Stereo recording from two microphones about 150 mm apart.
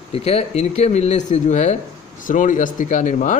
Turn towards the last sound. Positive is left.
turn(degrees=55)  # may be behind; listen again after turning